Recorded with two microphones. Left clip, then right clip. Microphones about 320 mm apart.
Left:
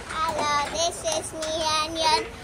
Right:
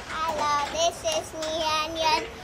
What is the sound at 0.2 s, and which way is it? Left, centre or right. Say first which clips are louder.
Child singing: left 1 dB; centre.